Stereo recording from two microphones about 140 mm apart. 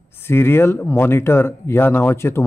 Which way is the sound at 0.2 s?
15° left (ahead or behind).